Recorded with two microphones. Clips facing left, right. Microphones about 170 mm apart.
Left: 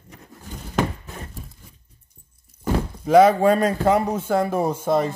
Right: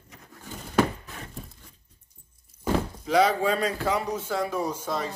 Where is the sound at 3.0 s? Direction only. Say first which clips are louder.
Left 9 dB; 50° left (ahead or behind).